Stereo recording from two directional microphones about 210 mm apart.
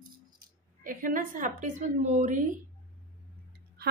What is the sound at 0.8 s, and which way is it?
A woman's voice, 40° right (ahead or behind).